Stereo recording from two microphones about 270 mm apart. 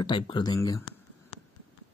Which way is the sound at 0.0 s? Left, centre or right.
Centre.